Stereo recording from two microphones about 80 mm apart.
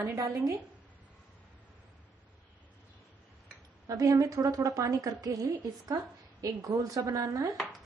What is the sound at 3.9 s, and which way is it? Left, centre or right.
A woman's voice, right.